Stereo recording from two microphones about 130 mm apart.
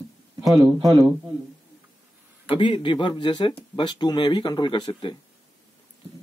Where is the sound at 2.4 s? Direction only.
40° left (ahead or behind).